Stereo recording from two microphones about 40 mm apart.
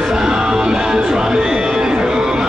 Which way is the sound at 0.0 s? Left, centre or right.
Centre.